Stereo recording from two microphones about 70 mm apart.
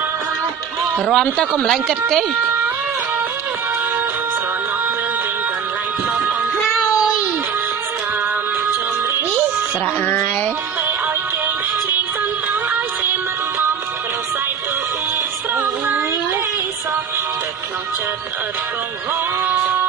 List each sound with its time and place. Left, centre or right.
0.9 s a man's voice: centre
10.0 s music: left
15.5 s music: right